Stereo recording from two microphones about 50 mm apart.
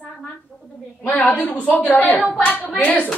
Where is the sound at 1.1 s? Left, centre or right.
Left.